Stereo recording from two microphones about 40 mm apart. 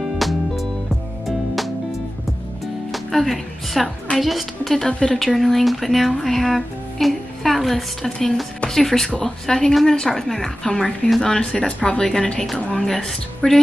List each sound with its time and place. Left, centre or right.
0.2 s music: centre
4.2 s speech: centre
4.8 s a woman's voice: centre
11.5 s a woman's voice: left; by 13.6 s centre